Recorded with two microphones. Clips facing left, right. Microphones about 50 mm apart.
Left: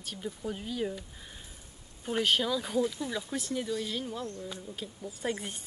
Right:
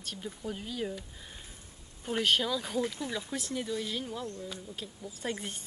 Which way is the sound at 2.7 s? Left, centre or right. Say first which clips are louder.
Left 3 dB; right.